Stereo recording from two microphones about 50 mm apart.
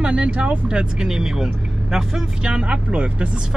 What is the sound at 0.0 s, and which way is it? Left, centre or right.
Speech, right.